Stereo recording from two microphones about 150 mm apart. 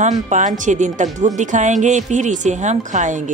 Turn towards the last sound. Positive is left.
turn(degrees=-55)  # may be behind; listen again after turning